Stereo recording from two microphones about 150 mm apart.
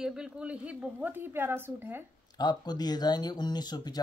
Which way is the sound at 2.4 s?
25° left (ahead or behind).